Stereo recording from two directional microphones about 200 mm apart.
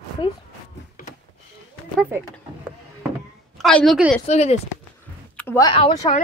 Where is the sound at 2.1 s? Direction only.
10° right (ahead or behind).